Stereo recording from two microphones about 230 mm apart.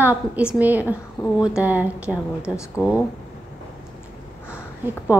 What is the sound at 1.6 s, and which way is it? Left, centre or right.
Speech, centre.